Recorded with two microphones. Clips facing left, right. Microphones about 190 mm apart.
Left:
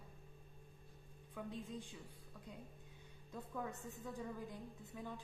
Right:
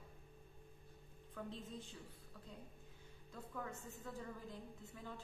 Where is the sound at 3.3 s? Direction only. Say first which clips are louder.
Left 3 dB; 15° left (ahead or behind).